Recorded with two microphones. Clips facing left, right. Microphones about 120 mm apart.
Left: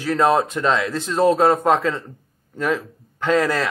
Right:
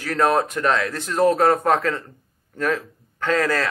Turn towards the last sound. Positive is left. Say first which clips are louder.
# left 2 dB
turn(degrees=20)  # may be behind; listen again after turning